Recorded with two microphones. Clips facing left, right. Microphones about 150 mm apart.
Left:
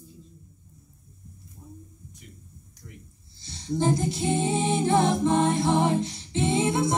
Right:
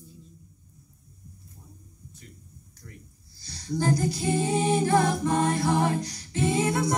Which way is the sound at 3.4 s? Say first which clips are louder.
Left 2 dB; 20° left (ahead or behind).